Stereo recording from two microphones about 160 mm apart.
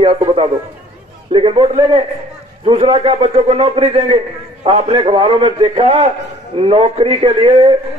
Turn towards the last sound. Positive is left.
turn(degrees=-35)  # may be behind; listen again after turning